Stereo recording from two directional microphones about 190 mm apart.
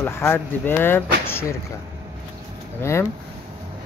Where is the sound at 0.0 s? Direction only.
10° left (ahead or behind).